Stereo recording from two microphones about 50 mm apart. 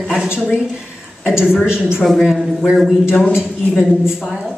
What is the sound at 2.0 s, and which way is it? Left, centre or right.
Speech, centre.